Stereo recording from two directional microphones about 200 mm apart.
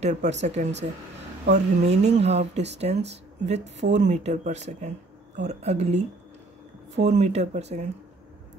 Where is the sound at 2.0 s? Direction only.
35° right (ahead or behind).